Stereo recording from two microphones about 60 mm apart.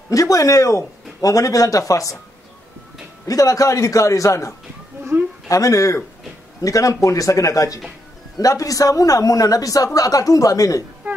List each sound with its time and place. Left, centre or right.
0.1 s speech: left
3.3 s a man's voice: left
11.1 s music: right